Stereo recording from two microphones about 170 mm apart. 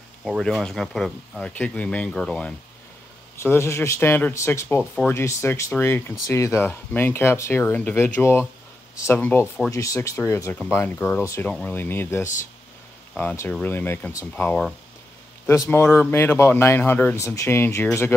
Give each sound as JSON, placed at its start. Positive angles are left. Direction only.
{"t": 0.2, "sound": "speech", "side_deg": 0}